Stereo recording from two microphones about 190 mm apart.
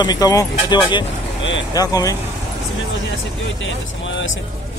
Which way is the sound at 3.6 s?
80° left.